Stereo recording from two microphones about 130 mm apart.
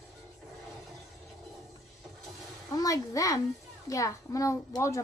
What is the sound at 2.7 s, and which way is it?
A child's voice, 25° left (ahead or behind).